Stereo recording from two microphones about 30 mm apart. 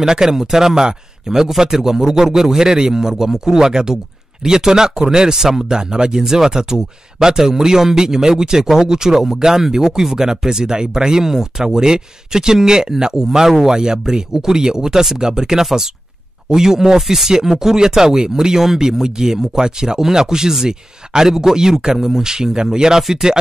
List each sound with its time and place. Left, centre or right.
0.0 s a man's voice: centre